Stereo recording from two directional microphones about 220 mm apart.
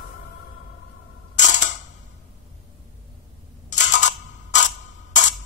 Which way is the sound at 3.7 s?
35° left (ahead or behind).